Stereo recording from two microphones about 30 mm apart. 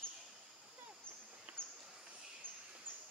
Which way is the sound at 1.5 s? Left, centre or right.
Right.